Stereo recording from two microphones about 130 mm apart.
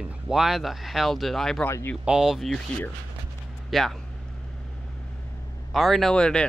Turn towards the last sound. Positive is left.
turn(degrees=5)  # may be behind; listen again after turning